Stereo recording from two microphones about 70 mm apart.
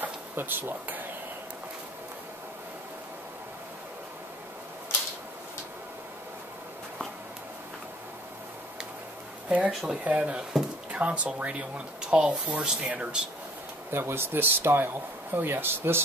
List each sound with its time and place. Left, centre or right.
0.0 s speech: right
9.7 s speech: centre
13.8 s speech: right